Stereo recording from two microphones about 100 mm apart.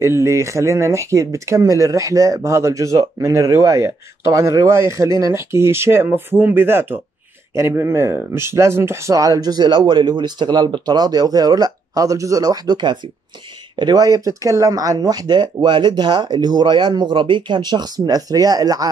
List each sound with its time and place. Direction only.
0.0 s speech: 30° right (ahead or behind)